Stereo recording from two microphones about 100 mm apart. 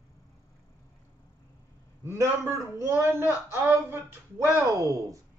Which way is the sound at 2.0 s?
30° right (ahead or behind).